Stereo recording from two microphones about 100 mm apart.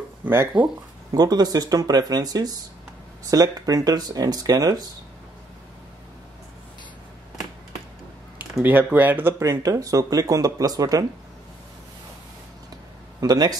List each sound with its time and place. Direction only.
0.2 s speech: 20° right (ahead or behind)
1.1 s speech: 40° right (ahead or behind)
8.6 s speech: 15° right (ahead or behind)
9.4 s speech: 35° right (ahead or behind)
13.2 s speech: 40° right (ahead or behind)